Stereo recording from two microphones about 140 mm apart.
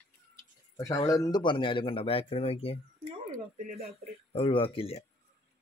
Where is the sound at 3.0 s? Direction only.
55° right (ahead or behind).